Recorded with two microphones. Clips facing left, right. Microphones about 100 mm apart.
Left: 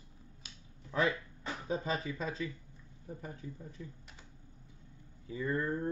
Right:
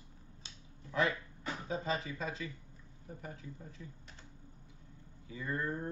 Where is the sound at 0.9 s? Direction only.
25° left (ahead or behind).